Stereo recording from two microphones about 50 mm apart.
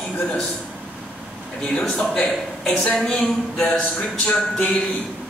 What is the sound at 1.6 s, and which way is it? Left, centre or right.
Speech, centre.